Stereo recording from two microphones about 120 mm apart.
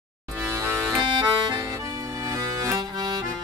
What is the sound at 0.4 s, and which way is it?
Music, 20° right (ahead or behind).